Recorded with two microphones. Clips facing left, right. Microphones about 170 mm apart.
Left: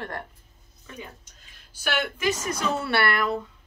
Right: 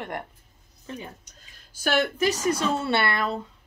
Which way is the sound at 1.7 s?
45° right (ahead or behind).